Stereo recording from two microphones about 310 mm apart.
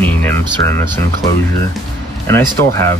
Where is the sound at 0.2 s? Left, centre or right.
Centre.